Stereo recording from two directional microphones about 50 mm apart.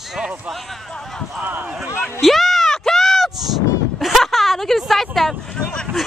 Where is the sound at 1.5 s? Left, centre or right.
Right.